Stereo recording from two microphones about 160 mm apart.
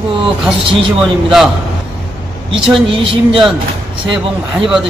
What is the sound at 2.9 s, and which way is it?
Speech, 35° right (ahead or behind).